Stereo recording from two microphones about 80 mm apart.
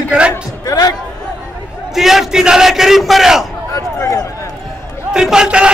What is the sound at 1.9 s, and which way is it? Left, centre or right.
A man's voice, centre.